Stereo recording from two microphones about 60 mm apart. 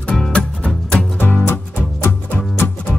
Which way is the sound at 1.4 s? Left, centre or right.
Left.